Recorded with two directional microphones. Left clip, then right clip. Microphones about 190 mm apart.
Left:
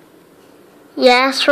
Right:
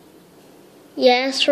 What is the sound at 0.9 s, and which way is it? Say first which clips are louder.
Speech: left 5 dB; 55° left (ahead or behind).